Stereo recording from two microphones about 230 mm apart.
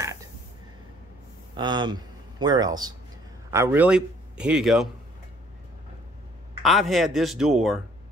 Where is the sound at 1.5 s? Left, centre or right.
Centre.